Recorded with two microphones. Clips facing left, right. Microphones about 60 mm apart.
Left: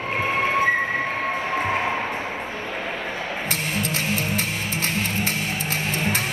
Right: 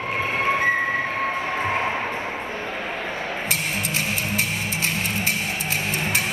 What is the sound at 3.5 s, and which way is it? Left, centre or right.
Music, left.